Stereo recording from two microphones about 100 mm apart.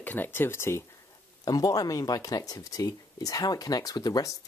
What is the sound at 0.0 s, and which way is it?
Speech, 20° left (ahead or behind).